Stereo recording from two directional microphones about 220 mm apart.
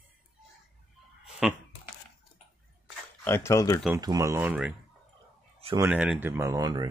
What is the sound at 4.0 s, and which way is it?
Speech, 15° right (ahead or behind).